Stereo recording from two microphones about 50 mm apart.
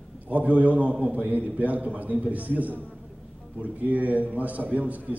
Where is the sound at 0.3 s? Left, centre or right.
Right.